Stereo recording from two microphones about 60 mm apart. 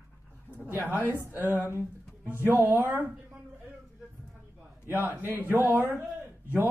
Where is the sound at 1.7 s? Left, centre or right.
Right.